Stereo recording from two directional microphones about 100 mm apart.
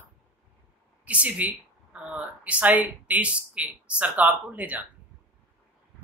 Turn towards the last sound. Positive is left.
turn(degrees=-15)  # may be behind; listen again after turning